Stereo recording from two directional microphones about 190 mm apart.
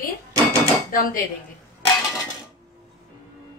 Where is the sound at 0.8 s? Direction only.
45° left (ahead or behind).